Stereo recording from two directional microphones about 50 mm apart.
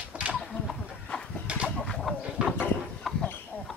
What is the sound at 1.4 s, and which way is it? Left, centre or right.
Chicken, right.